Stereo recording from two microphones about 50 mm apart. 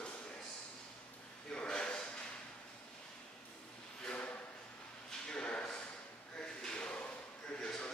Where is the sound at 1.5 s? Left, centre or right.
Centre.